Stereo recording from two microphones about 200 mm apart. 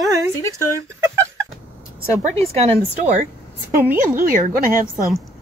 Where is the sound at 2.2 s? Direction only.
30° right (ahead or behind).